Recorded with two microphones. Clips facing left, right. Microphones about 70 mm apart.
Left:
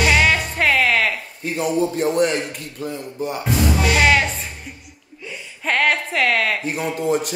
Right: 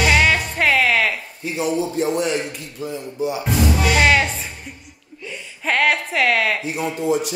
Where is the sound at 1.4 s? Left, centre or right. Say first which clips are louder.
Left 2 dB; left.